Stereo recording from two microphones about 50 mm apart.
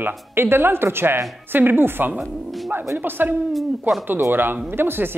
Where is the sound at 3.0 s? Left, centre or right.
Right.